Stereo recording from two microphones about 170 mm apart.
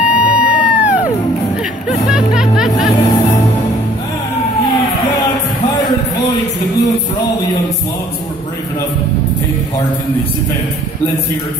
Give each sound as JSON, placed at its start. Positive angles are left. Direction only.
{"t": 0.0, "sound": "music", "side_deg": -5}
{"t": 2.0, "sound": "music", "side_deg": -5}
{"t": 3.0, "sound": "music", "side_deg": 40}